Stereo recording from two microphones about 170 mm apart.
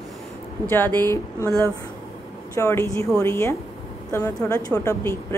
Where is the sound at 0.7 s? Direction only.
10° left (ahead or behind).